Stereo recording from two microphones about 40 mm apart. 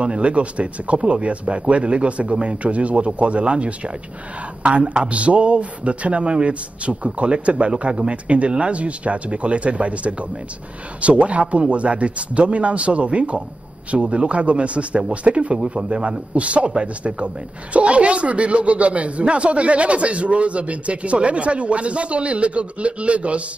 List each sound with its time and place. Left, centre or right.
0.0 s speech: right